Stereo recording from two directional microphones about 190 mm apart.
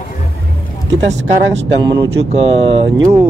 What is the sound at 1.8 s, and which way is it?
Speech, 20° right (ahead or behind).